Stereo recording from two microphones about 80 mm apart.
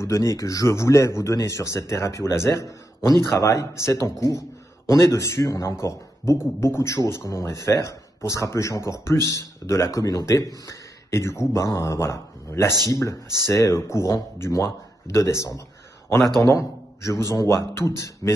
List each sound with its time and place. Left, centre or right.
0.0 s a man's voice: left
12.7 s speech: right
13.5 s a man's voice: left